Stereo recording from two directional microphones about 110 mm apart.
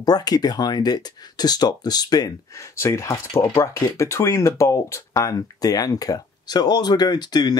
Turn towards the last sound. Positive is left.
turn(degrees=40)  # may be behind; listen again after turning